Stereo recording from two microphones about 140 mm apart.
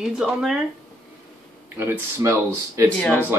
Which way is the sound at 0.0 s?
Centre (ahead or behind).